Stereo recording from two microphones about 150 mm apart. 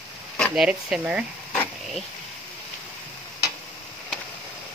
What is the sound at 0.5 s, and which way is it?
Speech, 5° right (ahead or behind).